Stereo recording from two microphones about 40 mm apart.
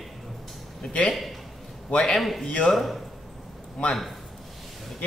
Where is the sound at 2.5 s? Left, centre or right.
Left.